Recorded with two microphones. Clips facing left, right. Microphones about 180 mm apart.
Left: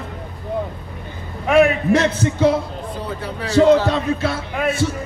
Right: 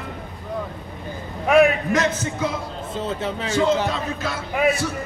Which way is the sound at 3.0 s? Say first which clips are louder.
Right 4 dB; 20° right (ahead or behind).